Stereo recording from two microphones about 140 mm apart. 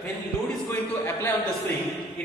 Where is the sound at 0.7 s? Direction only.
15° left (ahead or behind).